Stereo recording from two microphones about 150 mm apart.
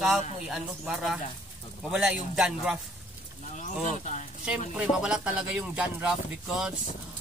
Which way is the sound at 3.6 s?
55° left (ahead or behind).